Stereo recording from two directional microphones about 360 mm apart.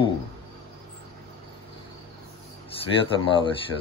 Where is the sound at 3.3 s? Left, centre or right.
Centre.